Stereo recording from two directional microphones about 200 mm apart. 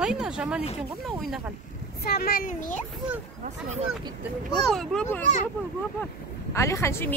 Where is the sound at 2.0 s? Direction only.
50° left (ahead or behind).